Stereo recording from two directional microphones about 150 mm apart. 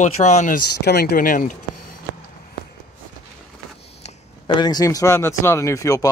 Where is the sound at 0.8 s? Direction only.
90° left; by 1.5 s 65° left (ahead or behind).